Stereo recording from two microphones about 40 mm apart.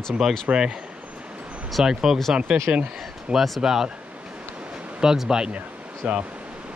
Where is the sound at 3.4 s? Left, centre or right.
Centre.